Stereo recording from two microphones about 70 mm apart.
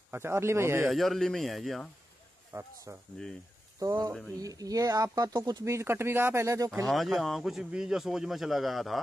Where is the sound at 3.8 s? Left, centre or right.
Right.